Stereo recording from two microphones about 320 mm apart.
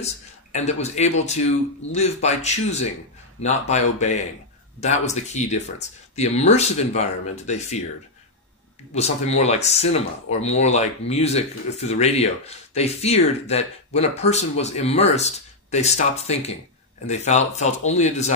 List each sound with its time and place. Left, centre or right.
0.0 s speech: left
8.9 s speech: centre